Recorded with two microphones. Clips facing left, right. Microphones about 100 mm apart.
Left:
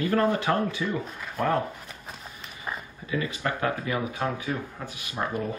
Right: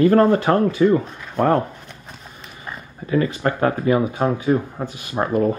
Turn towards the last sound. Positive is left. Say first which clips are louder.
# right 10 dB
turn(degrees=-45)  # may be behind; listen again after turning